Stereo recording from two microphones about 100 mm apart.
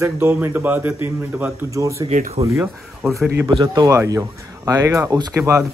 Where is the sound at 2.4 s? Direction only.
90° right.